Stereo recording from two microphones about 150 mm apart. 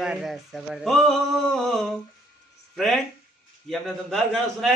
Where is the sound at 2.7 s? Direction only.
Centre (ahead or behind).